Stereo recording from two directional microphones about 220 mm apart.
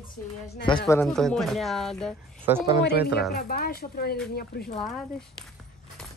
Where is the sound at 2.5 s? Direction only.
10° right (ahead or behind).